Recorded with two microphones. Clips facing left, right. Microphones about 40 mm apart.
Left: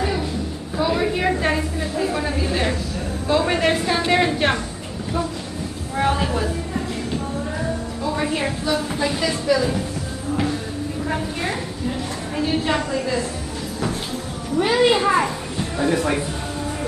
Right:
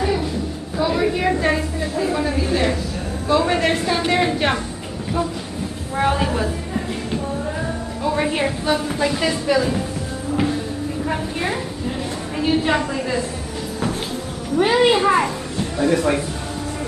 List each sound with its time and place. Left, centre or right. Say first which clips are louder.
0.7 s a sound: right 1 dB; centre
2.0 s a woman's voice: right 2 dB; centre
5.9 s a sound: right 1 dB; centre
8.0 s music: right 4 dB; right
8.8 s speech: right 2 dB; centre
9.2 s speech: left 1 dB; right
12.4 s a woman's voice: right 3 dB; centre
14.6 s a woman's voice: right 2 dB; centre